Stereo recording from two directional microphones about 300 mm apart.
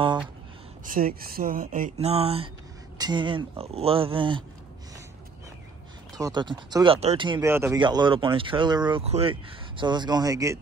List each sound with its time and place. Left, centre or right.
0.9 s speech: right
6.1 s speech: centre